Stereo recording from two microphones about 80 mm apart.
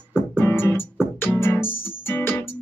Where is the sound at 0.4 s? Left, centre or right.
Left.